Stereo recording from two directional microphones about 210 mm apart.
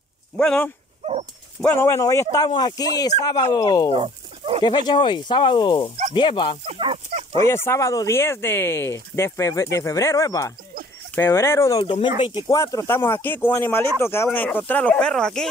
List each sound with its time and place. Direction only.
0.4 s speech: 5° left (ahead or behind)
3.9 s dog: 25° right (ahead or behind)
4.6 s speech: 20° left (ahead or behind)
6.6 s a sound: 25° right (ahead or behind)
7.3 s speech: 10° left (ahead or behind)